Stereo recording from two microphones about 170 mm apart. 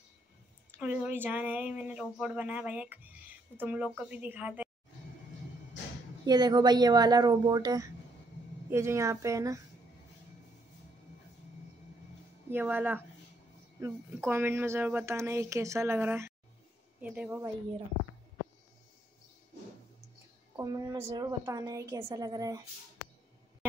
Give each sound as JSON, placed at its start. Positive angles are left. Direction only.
{"t": 0.7, "sound": "speech", "side_deg": -10}
{"t": 6.2, "sound": "a woman's voice", "side_deg": -25}
{"t": 12.4, "sound": "speech", "side_deg": -10}
{"t": 20.5, "sound": "a woman's voice", "side_deg": -20}